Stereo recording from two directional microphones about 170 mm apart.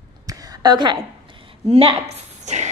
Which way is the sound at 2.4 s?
45° right (ahead or behind).